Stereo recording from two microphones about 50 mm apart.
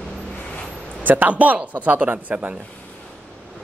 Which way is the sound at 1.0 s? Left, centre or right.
Right.